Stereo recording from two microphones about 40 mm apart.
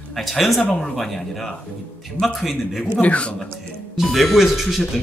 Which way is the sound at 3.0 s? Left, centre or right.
Left.